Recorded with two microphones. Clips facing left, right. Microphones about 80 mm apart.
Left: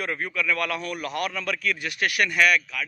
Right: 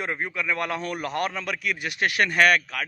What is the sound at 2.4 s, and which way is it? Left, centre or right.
Speech, right.